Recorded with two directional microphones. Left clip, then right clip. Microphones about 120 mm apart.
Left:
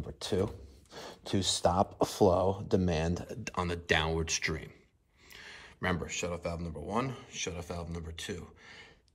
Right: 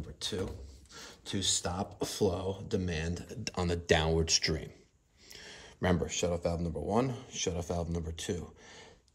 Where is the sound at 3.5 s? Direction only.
25° right (ahead or behind).